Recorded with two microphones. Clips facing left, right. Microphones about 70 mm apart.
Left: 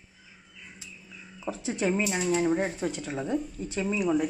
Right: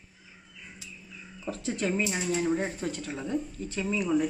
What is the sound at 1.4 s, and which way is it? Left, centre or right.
A woman's voice, centre.